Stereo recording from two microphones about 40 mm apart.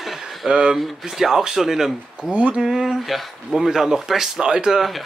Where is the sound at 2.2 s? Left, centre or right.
Right.